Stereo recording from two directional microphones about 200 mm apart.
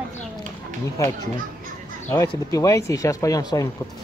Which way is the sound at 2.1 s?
15° left (ahead or behind).